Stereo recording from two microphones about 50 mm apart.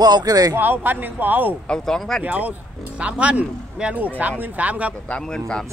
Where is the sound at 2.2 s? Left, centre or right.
Right.